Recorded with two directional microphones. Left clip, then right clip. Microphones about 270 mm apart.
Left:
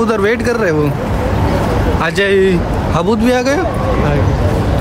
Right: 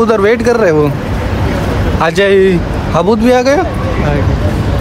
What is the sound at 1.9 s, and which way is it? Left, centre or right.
Speech, centre.